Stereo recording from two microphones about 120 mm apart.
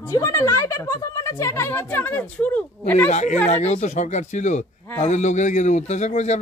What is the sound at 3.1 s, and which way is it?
A man's voice, 75° left (ahead or behind).